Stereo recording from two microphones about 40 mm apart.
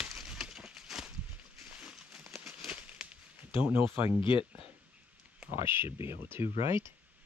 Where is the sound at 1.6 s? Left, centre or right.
Right.